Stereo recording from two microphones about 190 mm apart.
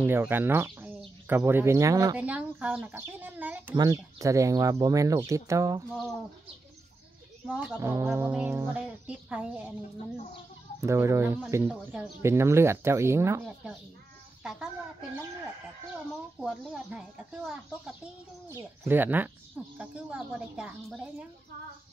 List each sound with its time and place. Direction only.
0.0 s speech: 10° right (ahead or behind)
2.1 s speech: 5° right (ahead or behind)
7.4 s speech: 5° right (ahead or behind)
10.1 s chicken: 35° left (ahead or behind)
10.8 s speech: 15° right (ahead or behind)
14.4 s speech: 5° right (ahead or behind)
16.3 s speech: 5° right (ahead or behind)